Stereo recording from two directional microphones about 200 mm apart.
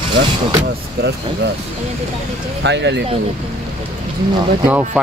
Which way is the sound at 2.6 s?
60° right (ahead or behind).